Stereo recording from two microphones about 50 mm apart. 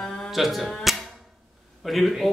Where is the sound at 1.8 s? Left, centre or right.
Centre.